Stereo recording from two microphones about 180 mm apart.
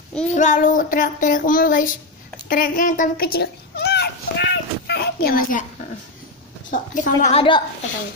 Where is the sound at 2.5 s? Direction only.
50° left (ahead or behind).